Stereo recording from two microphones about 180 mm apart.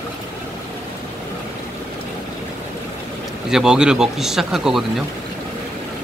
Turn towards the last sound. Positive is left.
turn(degrees=0)  # may be behind; listen again after turning